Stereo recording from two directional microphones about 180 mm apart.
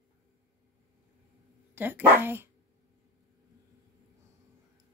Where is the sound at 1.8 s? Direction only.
10° right (ahead or behind).